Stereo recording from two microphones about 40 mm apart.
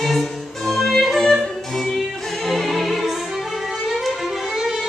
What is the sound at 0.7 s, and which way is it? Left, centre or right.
Music, centre.